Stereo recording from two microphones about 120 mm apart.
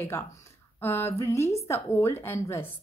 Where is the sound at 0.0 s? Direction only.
25° left (ahead or behind).